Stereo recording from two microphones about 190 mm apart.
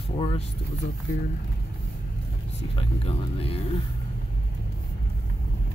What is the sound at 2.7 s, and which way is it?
Speech, 30° left (ahead or behind).